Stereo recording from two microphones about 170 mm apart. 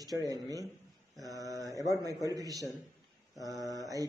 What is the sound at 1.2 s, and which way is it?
Mantra, 20° right (ahead or behind).